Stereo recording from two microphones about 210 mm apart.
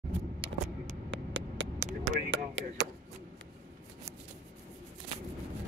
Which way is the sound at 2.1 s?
60° right (ahead or behind).